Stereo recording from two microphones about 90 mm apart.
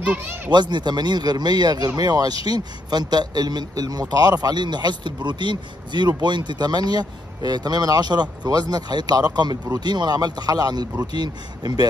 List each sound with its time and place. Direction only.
0.0 s speech: 15° right (ahead or behind)
0.5 s a man's voice: 55° right (ahead or behind)